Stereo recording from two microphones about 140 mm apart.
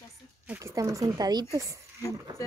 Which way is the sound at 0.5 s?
20° right (ahead or behind).